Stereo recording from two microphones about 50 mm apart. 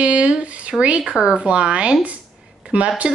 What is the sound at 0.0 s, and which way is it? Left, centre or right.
A woman's voice, right.